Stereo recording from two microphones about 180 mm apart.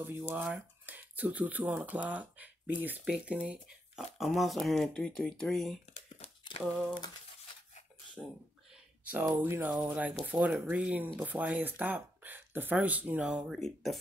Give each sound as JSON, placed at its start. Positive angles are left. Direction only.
{"t": 0.3, "sound": "speech", "side_deg": -10}
{"t": 6.1, "sound": "crumpling", "side_deg": 30}
{"t": 9.2, "sound": "speech", "side_deg": -15}